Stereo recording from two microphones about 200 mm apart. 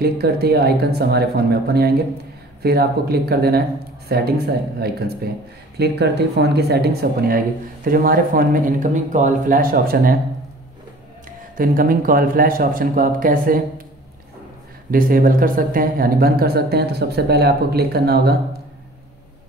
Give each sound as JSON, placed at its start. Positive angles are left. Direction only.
{"t": 0.0, "sound": "speech", "side_deg": -50}
{"t": 11.5, "sound": "speech", "side_deg": -45}
{"t": 14.9, "sound": "speech", "side_deg": -45}